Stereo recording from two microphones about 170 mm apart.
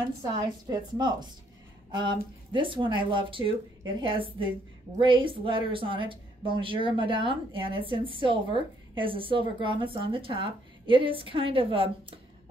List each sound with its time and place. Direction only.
0.7 s a woman's voice: 25° right (ahead or behind)